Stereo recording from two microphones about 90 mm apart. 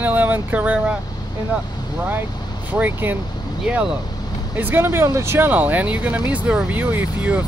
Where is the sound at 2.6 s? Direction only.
20° right (ahead or behind).